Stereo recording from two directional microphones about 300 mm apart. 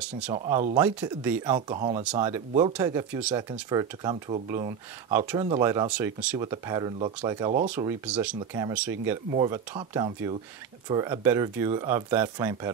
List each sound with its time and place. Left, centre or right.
0.3 s speech: centre
7.7 s speech: centre